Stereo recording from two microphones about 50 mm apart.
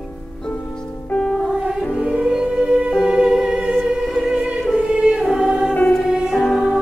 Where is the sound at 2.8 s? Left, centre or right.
Centre.